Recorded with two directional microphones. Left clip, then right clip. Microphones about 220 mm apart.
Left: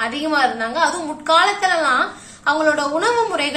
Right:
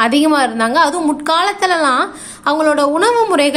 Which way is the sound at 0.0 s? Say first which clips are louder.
Right 6 dB; 45° right (ahead or behind).